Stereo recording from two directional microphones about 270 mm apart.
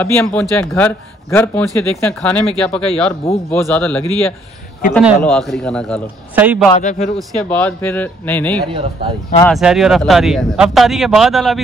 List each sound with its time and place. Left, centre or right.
0.0 s a man's voice: centre
6.8 s a man's voice: left
7.2 s a man's voice: centre